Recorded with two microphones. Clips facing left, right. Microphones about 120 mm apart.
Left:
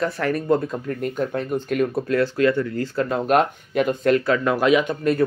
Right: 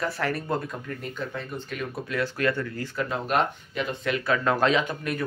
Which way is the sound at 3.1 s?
45° left (ahead or behind).